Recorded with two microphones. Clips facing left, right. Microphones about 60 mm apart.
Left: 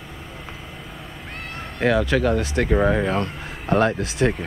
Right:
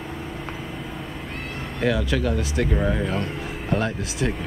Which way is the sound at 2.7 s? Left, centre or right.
Left.